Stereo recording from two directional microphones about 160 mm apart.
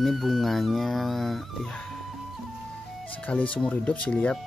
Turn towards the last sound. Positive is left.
turn(degrees=10)  # may be behind; listen again after turning